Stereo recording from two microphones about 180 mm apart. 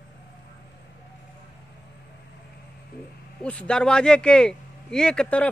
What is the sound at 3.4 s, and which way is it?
Speech, 5° left (ahead or behind).